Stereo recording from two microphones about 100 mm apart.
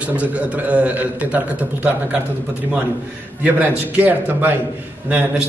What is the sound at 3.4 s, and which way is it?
A man's voice, 15° right (ahead or behind).